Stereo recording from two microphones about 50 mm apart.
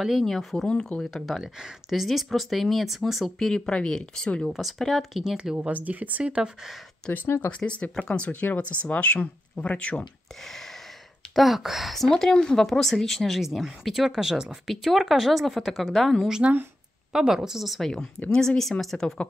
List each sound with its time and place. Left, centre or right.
0.2 s speech: centre
0.7 s speech: left
1.1 s speech: centre
3.3 s speech: centre
4.5 s speech: centre
5.6 s speech: right
7.1 s speech: left
7.5 s speech: left
8.3 s speech: left
10.4 s a sound: centre
11.3 s speech: centre
13.4 s speech: centre
16.3 s a woman's voice: centre
17.7 s speech: centre